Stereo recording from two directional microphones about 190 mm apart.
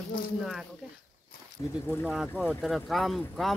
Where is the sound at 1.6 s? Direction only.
15° left (ahead or behind).